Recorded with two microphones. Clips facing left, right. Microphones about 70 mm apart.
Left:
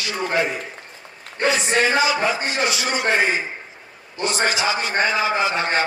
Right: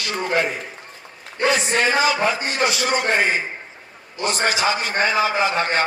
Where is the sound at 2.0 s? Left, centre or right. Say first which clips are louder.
Right 1 dB; right.